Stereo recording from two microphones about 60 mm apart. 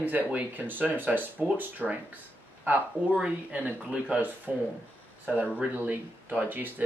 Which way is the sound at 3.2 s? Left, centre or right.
Right.